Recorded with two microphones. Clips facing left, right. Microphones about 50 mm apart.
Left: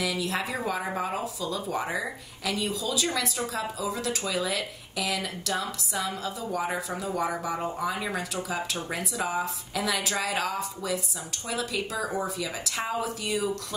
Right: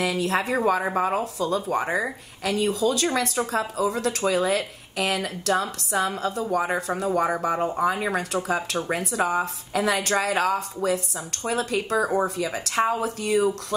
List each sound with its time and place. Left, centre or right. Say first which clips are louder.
0.0 s speech: right 5 dB; right